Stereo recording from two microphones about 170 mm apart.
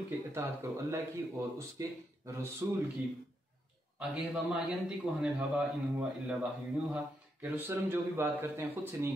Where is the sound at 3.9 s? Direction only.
5° right (ahead or behind).